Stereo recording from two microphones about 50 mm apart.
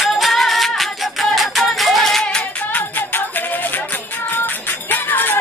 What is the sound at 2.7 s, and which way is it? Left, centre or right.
Music, left.